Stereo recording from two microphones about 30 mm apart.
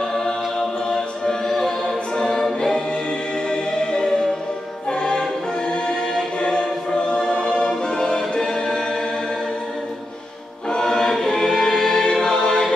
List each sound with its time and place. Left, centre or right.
0.1 s a capella: centre
1.4 s choir: centre
3.4 s music: left
6.4 s choir: left
8.2 s music: centre
10.7 s choir: centre
11.2 s music: left